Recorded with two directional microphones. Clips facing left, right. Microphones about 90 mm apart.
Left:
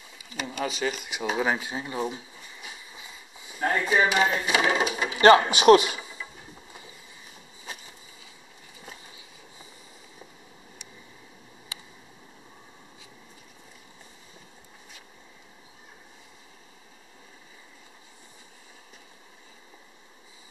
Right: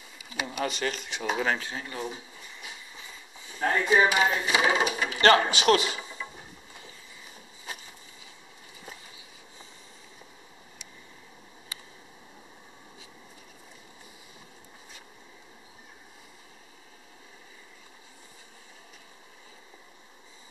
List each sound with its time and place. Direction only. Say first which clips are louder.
0.5 s speech: left 2 dB; centre (ahead or behind); by 2.1 s 20° left (ahead or behind)
3.4 s speech: even; 10° left (ahead or behind)
4.0 s speech: even; 15° right (ahead or behind)
4.9 s speech: left 6 dB; 15° left (ahead or behind)